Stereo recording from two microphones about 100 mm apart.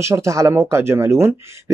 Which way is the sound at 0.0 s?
30° right (ahead or behind).